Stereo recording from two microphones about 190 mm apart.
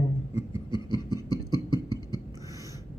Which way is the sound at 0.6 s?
25° left (ahead or behind).